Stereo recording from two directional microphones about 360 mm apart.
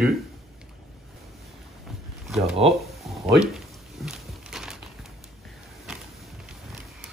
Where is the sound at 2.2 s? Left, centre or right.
Centre.